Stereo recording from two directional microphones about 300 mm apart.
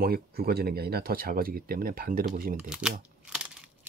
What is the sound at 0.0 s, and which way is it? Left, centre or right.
Speech, right.